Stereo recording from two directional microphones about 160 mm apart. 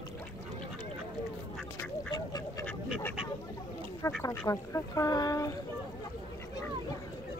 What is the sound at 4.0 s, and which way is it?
Speech, 15° left (ahead or behind).